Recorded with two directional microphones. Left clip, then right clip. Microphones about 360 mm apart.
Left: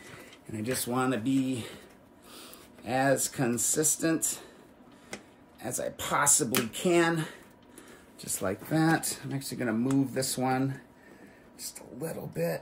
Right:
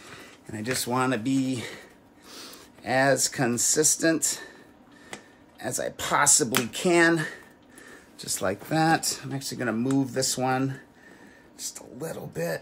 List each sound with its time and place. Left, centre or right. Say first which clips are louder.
0.5 s speech: right 4 dB; centre
5.6 s speech: right 4 dB; centre